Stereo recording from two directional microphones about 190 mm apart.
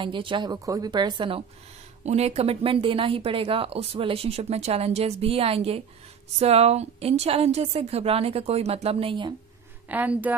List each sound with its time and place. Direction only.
0.0 s a woman's voice: 25° right (ahead or behind)
9.8 s speech: 10° right (ahead or behind)